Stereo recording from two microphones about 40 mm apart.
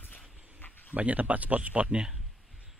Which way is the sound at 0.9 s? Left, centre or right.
Right.